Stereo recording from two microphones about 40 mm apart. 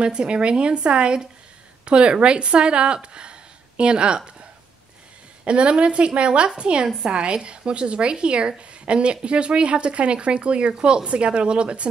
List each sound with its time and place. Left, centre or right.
0.0 s a woman's voice: right
5.4 s a woman's voice: right